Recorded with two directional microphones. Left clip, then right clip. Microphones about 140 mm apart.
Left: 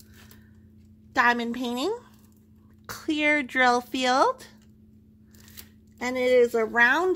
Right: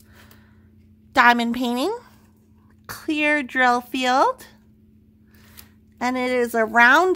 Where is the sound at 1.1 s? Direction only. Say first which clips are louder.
Right 7 dB; 40° right (ahead or behind).